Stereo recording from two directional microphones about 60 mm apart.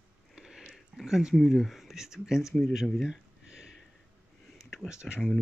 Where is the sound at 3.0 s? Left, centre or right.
Centre.